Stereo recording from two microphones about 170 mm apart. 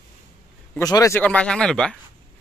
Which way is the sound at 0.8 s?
20° left (ahead or behind).